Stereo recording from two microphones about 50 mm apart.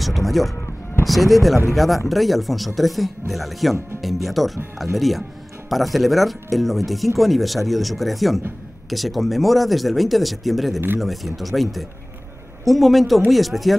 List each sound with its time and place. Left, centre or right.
0.0 s speech: centre